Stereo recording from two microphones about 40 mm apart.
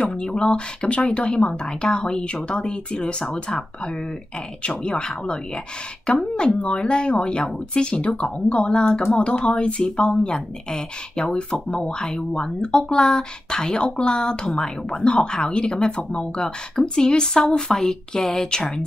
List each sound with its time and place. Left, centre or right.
0.0 s speech: left
4.6 s speech: left
6.7 s speech: left
9.1 s a woman's voice: left; by 18.7 s centre